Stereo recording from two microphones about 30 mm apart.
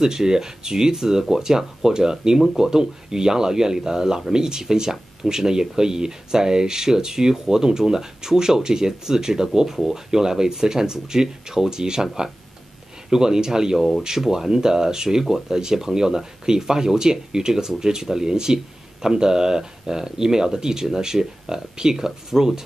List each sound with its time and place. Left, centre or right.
0.0 s speech: right
13.1 s speech: centre